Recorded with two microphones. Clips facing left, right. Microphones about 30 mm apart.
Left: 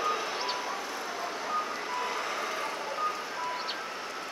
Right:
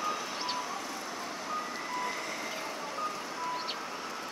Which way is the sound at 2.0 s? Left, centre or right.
Centre.